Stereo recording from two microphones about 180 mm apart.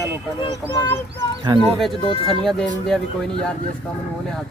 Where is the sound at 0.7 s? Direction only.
15° left (ahead or behind).